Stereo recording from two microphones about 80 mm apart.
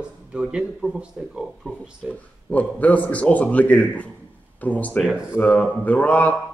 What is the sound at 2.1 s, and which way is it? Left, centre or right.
A man's voice, centre.